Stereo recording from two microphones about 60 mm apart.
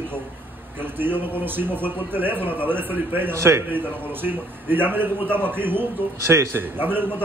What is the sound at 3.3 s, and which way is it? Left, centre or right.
A man's voice, right.